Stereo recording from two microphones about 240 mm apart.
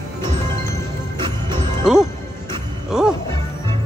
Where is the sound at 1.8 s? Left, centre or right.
Centre.